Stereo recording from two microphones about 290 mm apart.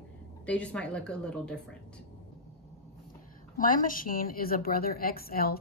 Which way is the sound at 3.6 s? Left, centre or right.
Left.